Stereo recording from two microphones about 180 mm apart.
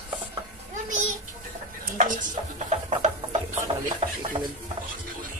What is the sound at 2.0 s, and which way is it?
Music, 45° right (ahead or behind).